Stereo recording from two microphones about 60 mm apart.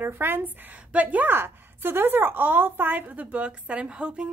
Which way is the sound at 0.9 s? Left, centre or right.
Right.